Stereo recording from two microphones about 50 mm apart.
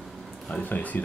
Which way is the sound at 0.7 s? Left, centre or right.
Left.